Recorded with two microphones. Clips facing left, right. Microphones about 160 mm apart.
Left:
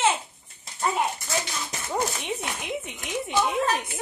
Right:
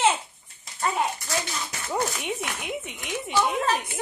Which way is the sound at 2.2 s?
Centre (ahead or behind).